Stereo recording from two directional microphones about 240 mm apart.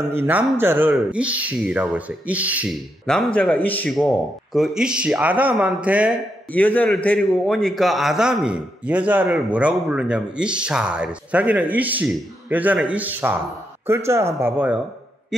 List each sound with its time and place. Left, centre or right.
0.1 s speech: centre
6.5 s speech: centre